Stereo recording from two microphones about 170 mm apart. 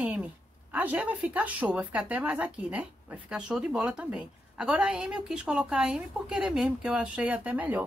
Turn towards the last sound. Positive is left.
turn(degrees=-10)  # may be behind; listen again after turning